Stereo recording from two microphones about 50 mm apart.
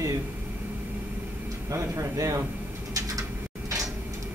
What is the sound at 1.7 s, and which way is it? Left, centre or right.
Speech, right.